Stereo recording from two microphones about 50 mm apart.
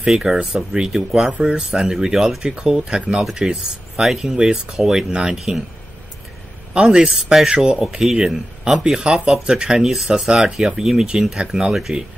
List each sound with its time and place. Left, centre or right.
0.0 s speech: centre
6.7 s speech: centre